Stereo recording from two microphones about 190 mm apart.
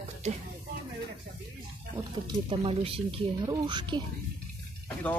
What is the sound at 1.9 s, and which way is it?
Speech, 25° right (ahead or behind).